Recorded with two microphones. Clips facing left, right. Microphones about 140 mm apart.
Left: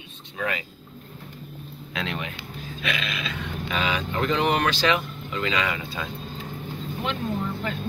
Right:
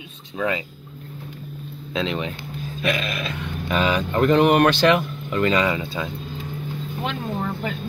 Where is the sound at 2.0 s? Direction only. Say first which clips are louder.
Right 6 dB; 25° right (ahead or behind).